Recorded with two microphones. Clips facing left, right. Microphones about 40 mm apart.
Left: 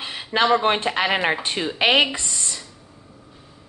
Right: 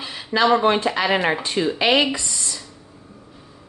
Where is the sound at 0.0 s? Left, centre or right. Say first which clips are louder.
Right 1 dB; left.